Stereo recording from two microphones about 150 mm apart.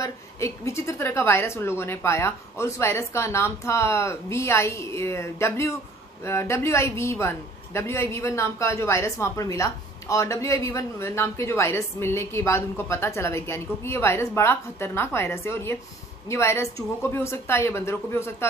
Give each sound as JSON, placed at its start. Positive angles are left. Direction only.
{"t": 0.0, "sound": "a man's voice", "side_deg": 20}